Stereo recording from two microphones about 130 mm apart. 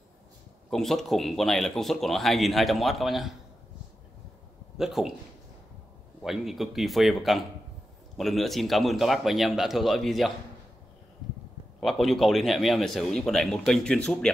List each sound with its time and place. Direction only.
0.7 s speech: centre (ahead or behind)
4.7 s speech: 5° right (ahead or behind)
6.2 s speech: centre (ahead or behind)
11.8 s speech: centre (ahead or behind)